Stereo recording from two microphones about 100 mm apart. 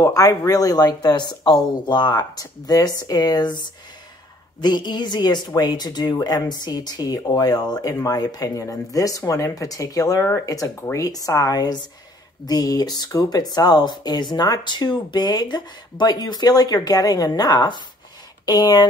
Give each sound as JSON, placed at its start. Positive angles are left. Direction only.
{"t": 0.0, "sound": "speech", "side_deg": 35}